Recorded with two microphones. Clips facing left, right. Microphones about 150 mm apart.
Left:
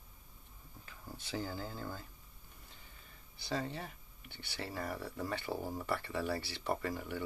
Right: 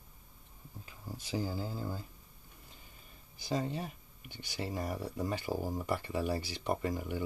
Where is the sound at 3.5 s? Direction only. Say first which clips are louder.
Right 4 dB; 15° right (ahead or behind).